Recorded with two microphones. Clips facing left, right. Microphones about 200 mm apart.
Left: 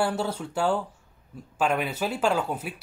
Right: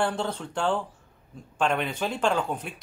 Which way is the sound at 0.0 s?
10° left (ahead or behind).